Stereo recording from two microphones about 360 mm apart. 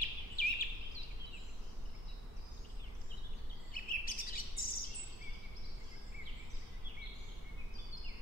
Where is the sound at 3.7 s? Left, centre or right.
Left.